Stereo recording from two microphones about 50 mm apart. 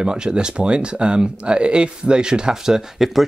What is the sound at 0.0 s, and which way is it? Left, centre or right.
Speech, centre.